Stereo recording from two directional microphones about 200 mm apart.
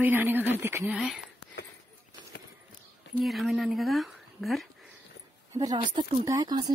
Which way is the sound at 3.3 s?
Centre (ahead or behind).